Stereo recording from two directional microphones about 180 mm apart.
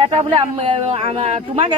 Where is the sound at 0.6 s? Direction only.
35° right (ahead or behind).